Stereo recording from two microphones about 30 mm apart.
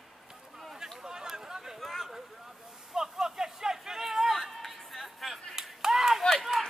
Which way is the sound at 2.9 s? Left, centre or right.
Centre.